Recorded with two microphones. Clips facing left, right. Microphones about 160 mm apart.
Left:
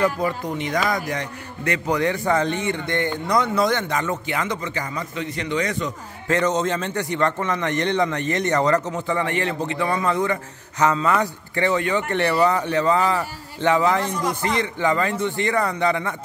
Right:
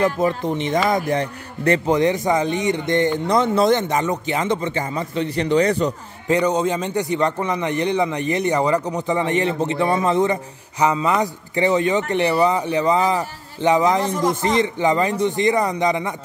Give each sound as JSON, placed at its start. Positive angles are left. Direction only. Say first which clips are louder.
{"t": 0.0, "sound": "a man's voice", "louder": "right 3 dB", "side_deg": -20}
{"t": 6.2, "sound": "a man's voice", "louder": "right 3 dB", "side_deg": -15}